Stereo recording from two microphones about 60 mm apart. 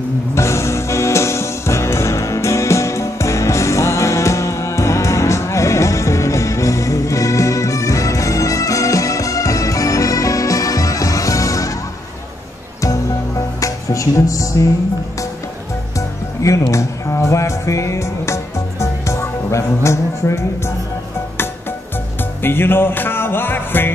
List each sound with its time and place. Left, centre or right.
0.3 s music: left
13.6 s music: left
16.4 s speech: left
22.4 s music: left